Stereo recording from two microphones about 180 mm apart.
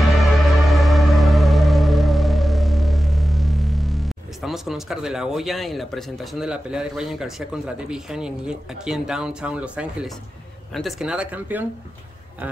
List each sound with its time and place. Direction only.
0.0 s music: centre (ahead or behind)
10.7 s speech: centre (ahead or behind)